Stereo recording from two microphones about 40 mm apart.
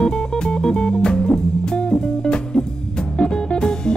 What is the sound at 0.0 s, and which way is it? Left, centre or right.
Music, centre.